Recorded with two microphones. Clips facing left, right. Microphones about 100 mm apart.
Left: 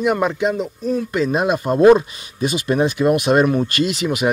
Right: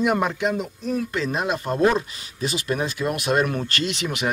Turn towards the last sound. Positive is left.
turn(degrees=5)  # may be behind; listen again after turning